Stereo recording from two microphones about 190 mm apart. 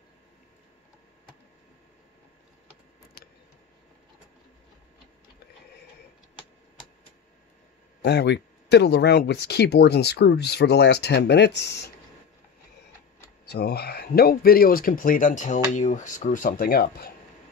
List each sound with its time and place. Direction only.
8.0 s speech: 60° left (ahead or behind)
13.5 s speech: 55° left (ahead or behind)